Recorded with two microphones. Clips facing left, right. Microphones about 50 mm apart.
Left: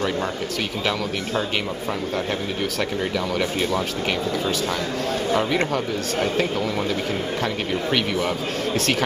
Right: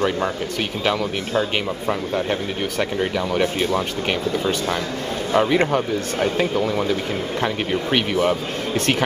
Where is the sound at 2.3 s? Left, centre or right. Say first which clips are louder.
Right 2 dB; centre.